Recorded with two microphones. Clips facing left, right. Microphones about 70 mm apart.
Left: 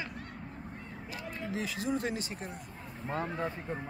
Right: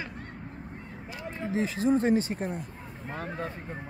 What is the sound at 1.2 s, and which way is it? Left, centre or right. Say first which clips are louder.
Speech: right 7 dB; right.